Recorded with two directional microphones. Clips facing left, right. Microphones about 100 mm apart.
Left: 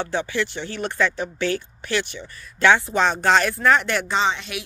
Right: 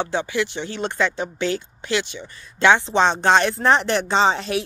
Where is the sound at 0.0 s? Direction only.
20° right (ahead or behind).